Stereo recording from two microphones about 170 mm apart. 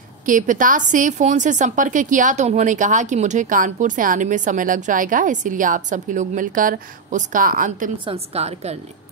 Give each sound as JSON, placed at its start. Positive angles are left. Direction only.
{"t": 0.2, "sound": "a woman's voice", "side_deg": -50}
{"t": 8.0, "sound": "a woman's voice", "side_deg": -35}